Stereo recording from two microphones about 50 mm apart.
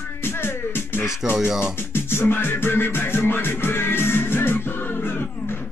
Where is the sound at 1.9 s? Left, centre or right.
Left.